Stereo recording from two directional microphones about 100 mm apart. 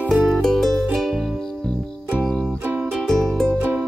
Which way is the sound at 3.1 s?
5° left (ahead or behind).